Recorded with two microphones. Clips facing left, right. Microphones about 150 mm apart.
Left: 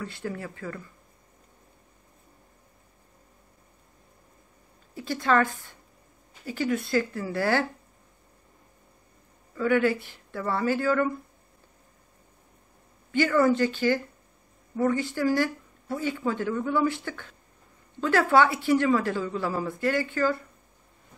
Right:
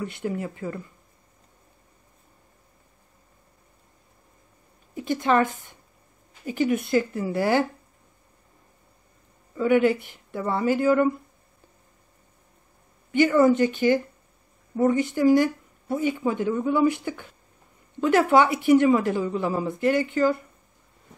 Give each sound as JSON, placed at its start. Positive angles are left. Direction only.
{"t": 0.0, "sound": "a woman's voice", "side_deg": -20}
{"t": 4.9, "sound": "speech", "side_deg": -20}
{"t": 9.6, "sound": "speech", "side_deg": -20}
{"t": 13.1, "sound": "a woman's voice", "side_deg": -20}